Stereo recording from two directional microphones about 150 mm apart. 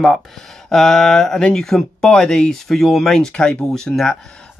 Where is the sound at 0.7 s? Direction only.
Centre (ahead or behind).